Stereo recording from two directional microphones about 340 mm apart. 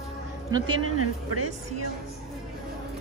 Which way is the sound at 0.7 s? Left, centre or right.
Right.